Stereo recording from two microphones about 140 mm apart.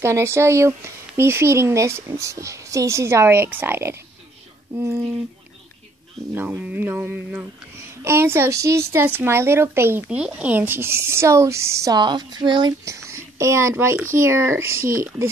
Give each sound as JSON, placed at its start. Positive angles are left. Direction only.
{"t": 0.0, "sound": "a woman's voice", "side_deg": -20}
{"t": 6.3, "sound": "a woman's voice", "side_deg": -15}